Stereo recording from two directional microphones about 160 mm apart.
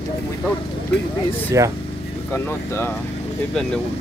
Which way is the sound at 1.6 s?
20° right (ahead or behind).